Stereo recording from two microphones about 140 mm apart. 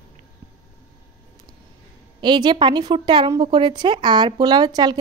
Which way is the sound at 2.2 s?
35° right (ahead or behind).